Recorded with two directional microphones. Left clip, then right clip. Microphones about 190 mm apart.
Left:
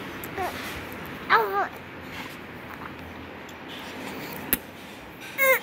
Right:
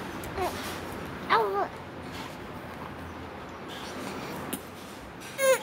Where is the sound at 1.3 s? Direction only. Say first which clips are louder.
Left 3 dB; 10° right (ahead or behind).